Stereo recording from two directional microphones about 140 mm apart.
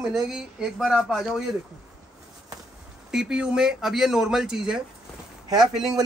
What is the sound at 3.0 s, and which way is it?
Speech, 5° right (ahead or behind).